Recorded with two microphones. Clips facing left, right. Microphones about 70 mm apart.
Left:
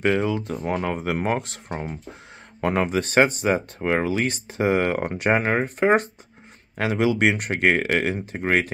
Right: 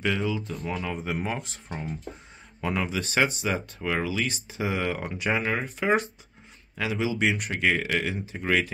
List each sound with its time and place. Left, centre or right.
0.0 s speech: left
6.8 s speech: left